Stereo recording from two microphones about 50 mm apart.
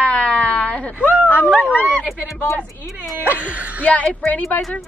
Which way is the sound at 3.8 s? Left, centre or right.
Left.